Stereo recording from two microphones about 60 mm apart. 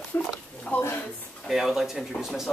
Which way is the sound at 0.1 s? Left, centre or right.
Left.